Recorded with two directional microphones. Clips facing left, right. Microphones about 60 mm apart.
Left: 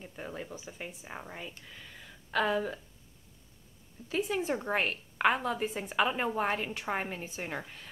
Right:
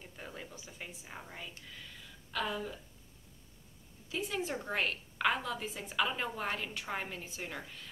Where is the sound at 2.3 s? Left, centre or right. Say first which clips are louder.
Left 7 dB; left.